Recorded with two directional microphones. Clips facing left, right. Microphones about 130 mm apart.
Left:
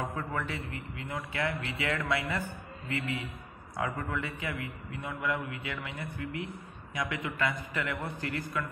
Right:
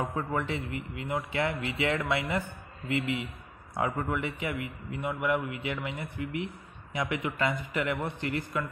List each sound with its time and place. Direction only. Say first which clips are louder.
0.0 s a man's voice: right 3 dB; 25° right (ahead or behind)